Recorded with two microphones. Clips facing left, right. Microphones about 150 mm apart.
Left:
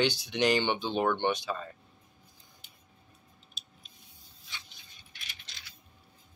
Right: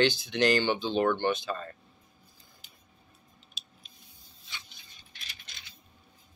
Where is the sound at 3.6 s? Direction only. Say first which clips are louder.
Right 2 dB; 90° right.